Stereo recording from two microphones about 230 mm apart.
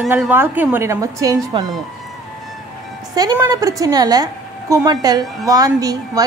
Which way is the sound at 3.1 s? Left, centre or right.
Centre.